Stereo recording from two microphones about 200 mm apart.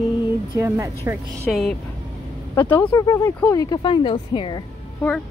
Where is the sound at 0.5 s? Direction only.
15° right (ahead or behind).